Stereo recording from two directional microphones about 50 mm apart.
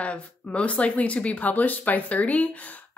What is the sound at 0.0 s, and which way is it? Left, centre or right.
Speech, left.